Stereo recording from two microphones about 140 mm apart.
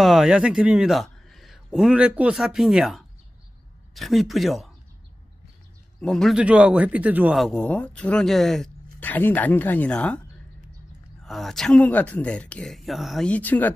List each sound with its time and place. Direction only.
0.0 s speech: centre (ahead or behind)
5.9 s speech: 5° left (ahead or behind)
6.4 s speech: 10° right (ahead or behind)
7.3 s speech: 5° left (ahead or behind)
11.2 s speech: centre (ahead or behind)